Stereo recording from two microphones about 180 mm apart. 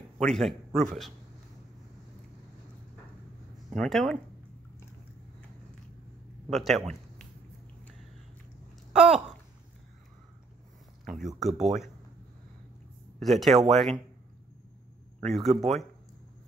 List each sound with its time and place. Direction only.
0.2 s speech: centre (ahead or behind)
3.7 s speech: 5° left (ahead or behind)
6.5 s speech: centre (ahead or behind)
8.9 s speech: 5° right (ahead or behind)
11.1 s speech: centre (ahead or behind)
13.2 s speech: centre (ahead or behind)
15.2 s speech: centre (ahead or behind)